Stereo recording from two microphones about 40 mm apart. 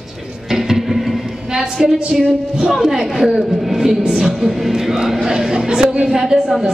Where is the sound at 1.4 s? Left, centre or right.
Centre.